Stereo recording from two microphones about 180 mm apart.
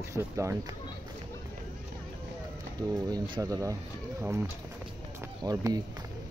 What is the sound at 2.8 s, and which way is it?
Speech, 20° right (ahead or behind).